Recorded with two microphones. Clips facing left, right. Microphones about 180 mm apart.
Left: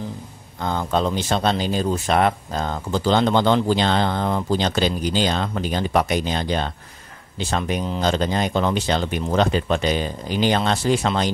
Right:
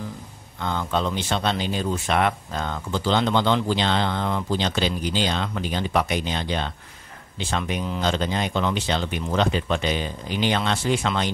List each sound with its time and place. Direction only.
0.6 s speech: 40° left (ahead or behind)